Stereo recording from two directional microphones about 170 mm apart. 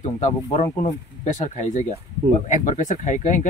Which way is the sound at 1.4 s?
40° left (ahead or behind).